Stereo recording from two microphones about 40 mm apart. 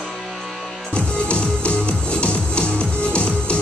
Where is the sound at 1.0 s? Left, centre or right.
Left.